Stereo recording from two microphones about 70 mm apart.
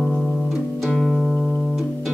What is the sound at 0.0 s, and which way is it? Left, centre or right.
Music, centre.